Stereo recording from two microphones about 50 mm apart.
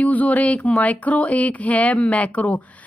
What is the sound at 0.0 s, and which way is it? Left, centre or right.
Speech, left.